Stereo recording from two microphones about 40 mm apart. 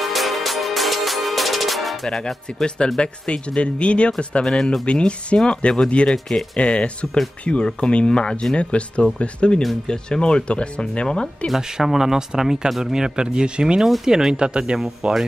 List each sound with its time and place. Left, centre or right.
0.0 s music: centre
2.0 s speech: centre
6.1 s speech: centre
6.6 s speech: left
11.7 s speech: centre; by 15.2 s right